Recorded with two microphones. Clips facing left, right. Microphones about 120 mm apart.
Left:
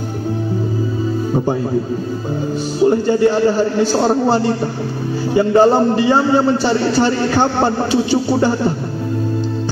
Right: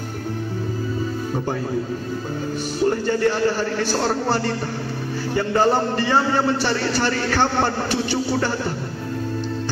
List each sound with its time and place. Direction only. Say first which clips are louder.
2.8 s a man's voice: left 7 dB; 15° left (ahead or behind)